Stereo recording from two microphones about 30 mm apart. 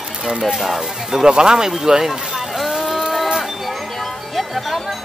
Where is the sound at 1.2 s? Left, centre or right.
Right.